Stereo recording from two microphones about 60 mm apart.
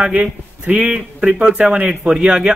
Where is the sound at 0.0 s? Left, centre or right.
Right.